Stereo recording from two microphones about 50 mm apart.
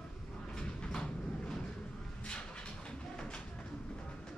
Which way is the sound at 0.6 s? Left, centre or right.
Centre.